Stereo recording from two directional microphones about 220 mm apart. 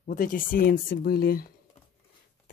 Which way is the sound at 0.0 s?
40° left (ahead or behind).